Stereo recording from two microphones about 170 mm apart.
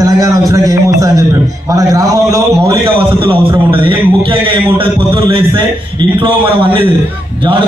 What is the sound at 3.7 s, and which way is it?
A man's voice, 30° right (ahead or behind).